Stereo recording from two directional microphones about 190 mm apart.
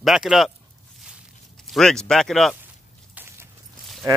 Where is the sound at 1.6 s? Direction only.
Centre (ahead or behind).